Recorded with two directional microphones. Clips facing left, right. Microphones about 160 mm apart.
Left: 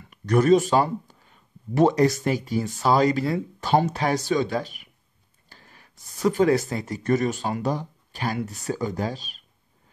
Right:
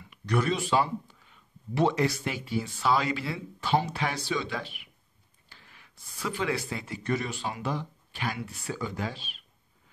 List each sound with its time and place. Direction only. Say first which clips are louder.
0.0 s speech: left 7 dB; 45° left (ahead or behind)